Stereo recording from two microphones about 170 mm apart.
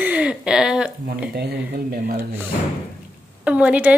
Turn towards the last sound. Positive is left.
turn(degrees=-5)  # may be behind; listen again after turning